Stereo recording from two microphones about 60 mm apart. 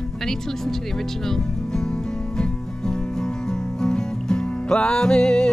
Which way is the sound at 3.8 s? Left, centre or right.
Centre.